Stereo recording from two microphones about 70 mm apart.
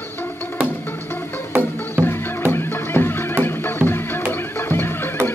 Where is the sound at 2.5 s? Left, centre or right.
Left.